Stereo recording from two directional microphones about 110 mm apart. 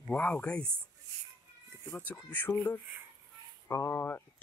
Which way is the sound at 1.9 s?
15° left (ahead or behind).